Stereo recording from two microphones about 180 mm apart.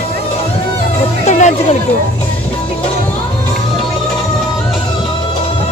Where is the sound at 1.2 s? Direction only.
40° left (ahead or behind).